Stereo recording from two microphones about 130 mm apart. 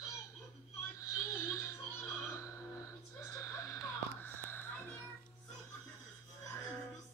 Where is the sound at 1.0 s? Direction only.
25° left (ahead or behind).